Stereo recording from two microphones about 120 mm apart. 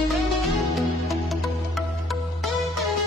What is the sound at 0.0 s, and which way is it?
Music, centre (ahead or behind).